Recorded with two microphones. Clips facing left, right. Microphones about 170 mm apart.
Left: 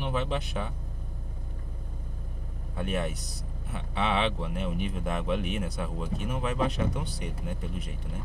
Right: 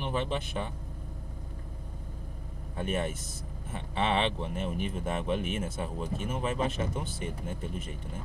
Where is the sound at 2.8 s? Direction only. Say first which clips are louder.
Even; centre (ahead or behind).